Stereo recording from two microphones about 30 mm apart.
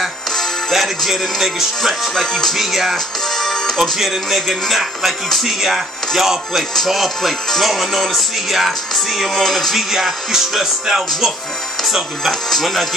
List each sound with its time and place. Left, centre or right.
0.7 s speech: centre
2.1 s music: centre
2.5 s speech: centre
3.3 s music: centre
4.0 s speech: centre
6.9 s music: centre
9.8 s speech: centre